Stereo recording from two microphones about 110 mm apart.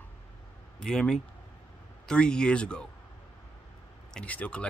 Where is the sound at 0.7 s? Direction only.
5° left (ahead or behind).